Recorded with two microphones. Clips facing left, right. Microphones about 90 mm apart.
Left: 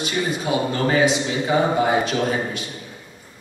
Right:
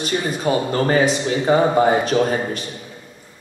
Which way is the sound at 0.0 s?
40° right (ahead or behind).